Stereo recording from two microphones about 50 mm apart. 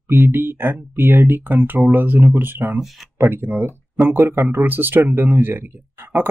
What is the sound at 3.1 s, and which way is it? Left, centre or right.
Speech, right.